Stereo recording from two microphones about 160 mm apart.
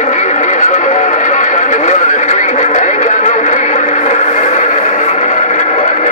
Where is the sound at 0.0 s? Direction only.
45° left (ahead or behind).